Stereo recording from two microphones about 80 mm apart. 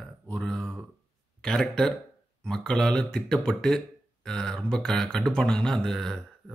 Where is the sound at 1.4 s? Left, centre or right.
Centre.